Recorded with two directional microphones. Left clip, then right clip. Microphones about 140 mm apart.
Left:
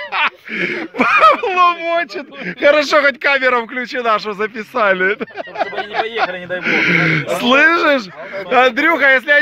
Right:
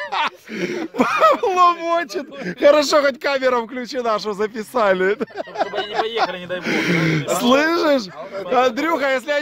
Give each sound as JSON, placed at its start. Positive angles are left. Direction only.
{"t": 0.1, "sound": "speech", "side_deg": -40}
{"t": 1.7, "sound": "speech", "side_deg": -65}
{"t": 8.5, "sound": "speech", "side_deg": -5}